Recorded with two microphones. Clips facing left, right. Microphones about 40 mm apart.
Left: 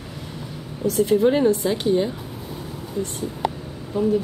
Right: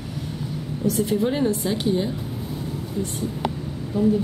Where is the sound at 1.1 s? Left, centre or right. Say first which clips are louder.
Left 8 dB; centre.